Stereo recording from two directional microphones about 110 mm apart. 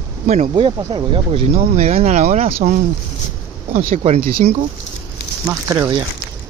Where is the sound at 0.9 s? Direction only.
55° right (ahead or behind).